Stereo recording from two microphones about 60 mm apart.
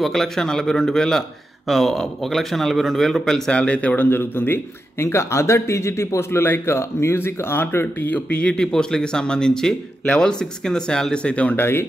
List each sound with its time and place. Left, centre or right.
0.0 s speech: centre; by 4.6 s left
4.9 s speech: left
11.5 s speech: left